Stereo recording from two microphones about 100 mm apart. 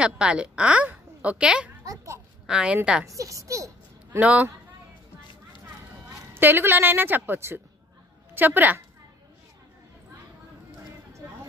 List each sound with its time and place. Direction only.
0.0 s a woman's voice: 10° right (ahead or behind)
3.1 s a child's voice: 35° right (ahead or behind)
4.2 s a woman's voice: 15° right (ahead or behind)
6.3 s a woman's voice: 20° right (ahead or behind)